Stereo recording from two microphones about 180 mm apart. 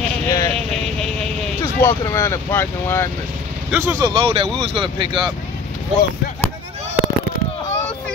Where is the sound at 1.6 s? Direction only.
15° left (ahead or behind).